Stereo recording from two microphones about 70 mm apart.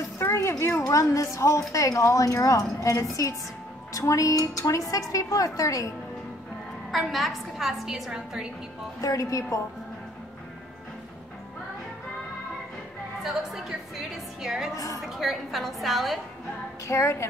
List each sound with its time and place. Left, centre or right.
0.2 s a sound: left
0.8 s a woman's voice: left
6.9 s a woman's voice: centre
9.0 s a woman's voice: left
13.2 s a woman's voice: centre
16.8 s a woman's voice: left